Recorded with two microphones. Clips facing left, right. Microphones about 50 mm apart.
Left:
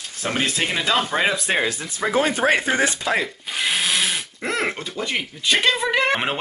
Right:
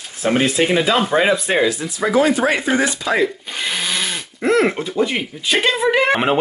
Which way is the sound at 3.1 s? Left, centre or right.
Centre.